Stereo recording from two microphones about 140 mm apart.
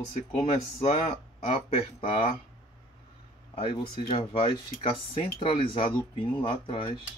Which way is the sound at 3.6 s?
40° left (ahead or behind).